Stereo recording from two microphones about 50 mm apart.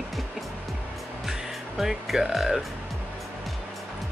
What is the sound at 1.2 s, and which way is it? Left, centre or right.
Speech, centre.